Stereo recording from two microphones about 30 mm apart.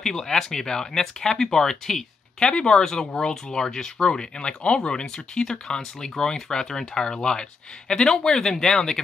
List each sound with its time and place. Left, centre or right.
0.0 s speech: centre
2.5 s speech: left
4.4 s speech: left